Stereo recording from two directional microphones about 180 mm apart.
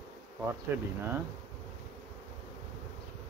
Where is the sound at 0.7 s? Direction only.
10° right (ahead or behind).